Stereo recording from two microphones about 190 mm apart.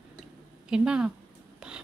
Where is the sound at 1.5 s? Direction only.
5° right (ahead or behind).